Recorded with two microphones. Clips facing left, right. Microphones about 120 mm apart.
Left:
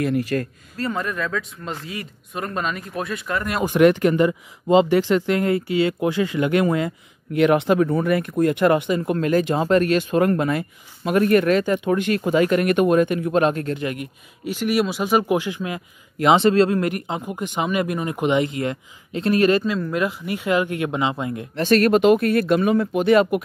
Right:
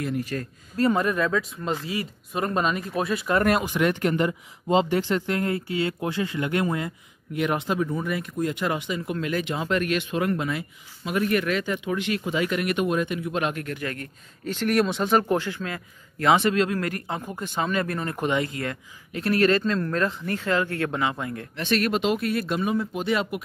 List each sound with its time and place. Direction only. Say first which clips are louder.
0.0 s speech: left 7 dB; 75° left (ahead or behind)
0.8 s speech: right 3 dB; 15° right (ahead or behind)
3.6 s speech: left 9 dB; 65° left (ahead or behind)
4.8 s speech: left 6 dB; 90° left
7.3 s speech: left 8 dB; 70° left (ahead or behind); by 13.8 s 30° left (ahead or behind)
13.8 s speech: left 5 dB; 10° left (ahead or behind)
21.5 s speech: left 8 dB; 45° left (ahead or behind)